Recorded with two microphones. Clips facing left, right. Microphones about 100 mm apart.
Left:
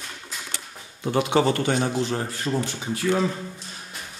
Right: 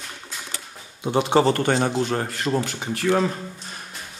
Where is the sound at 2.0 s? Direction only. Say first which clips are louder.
Right 2 dB; 55° right (ahead or behind).